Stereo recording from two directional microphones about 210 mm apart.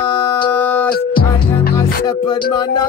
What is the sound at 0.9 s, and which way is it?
Music, 45° left (ahead or behind).